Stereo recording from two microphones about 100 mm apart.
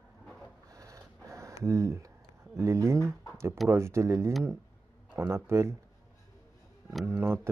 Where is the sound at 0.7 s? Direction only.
35° right (ahead or behind).